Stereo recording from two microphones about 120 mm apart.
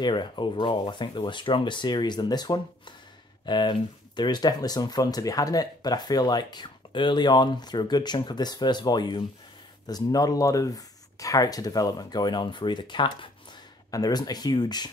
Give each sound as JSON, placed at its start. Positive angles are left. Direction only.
{"t": 0.0, "sound": "speech", "side_deg": 40}